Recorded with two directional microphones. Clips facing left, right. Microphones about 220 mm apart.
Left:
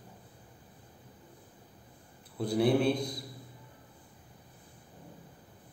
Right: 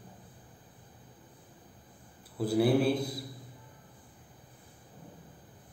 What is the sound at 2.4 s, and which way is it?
Speech, 5° right (ahead or behind).